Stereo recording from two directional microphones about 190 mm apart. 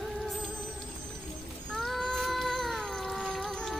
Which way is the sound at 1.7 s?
Centre (ahead or behind).